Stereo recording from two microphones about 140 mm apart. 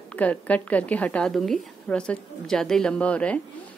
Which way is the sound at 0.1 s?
10° left (ahead or behind).